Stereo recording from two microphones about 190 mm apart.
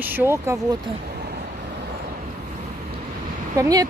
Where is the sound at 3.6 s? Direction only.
20° right (ahead or behind).